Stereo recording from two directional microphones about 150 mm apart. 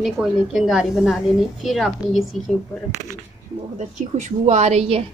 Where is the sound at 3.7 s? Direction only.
50° right (ahead or behind).